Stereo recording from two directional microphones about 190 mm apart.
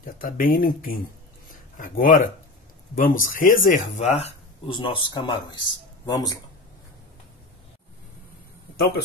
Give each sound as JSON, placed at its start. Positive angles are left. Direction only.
{"t": 0.0, "sound": "speech", "side_deg": 50}
{"t": 1.5, "sound": "a sound", "side_deg": 45}
{"t": 3.0, "sound": "speech", "side_deg": 45}